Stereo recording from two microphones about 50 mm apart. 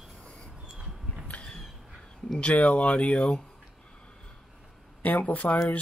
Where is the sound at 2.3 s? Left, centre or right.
Left.